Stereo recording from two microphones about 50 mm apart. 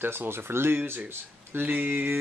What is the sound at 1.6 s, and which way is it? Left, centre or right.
Mantra, right.